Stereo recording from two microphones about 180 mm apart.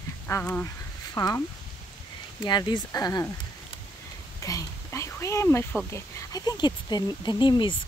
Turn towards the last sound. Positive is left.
turn(degrees=25)  # may be behind; listen again after turning